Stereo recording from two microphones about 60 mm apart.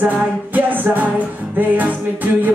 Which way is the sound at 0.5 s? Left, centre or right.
Right.